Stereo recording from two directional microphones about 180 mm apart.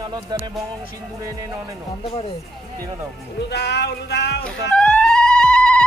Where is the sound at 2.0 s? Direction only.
30° left (ahead or behind).